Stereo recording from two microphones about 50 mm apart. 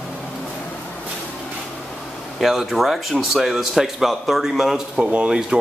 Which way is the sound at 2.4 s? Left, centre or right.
Centre.